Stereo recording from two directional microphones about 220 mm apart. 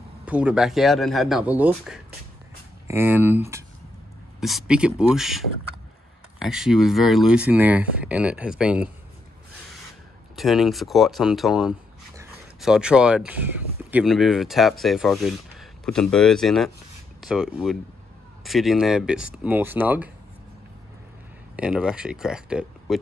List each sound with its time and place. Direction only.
0.2 s speech: 5° right (ahead or behind)
6.4 s speech: centre (ahead or behind)
10.3 s speech: centre (ahead or behind)
21.5 s speech: 5° right (ahead or behind)